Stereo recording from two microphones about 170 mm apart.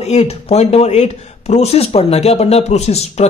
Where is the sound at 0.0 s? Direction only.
40° left (ahead or behind).